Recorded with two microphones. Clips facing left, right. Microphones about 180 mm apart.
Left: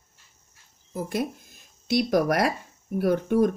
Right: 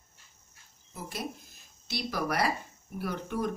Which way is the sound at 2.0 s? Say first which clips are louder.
Left 9 dB; 50° left (ahead or behind).